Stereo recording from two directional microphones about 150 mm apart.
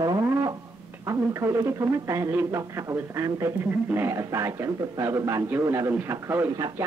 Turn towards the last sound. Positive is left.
turn(degrees=-20)  # may be behind; listen again after turning